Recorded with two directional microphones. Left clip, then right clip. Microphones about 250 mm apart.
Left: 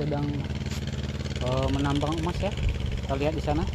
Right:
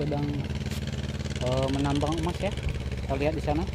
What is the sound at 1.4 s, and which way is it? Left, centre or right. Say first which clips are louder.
Speech: even; right.